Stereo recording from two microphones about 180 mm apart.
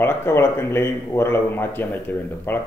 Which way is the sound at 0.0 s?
15° left (ahead or behind).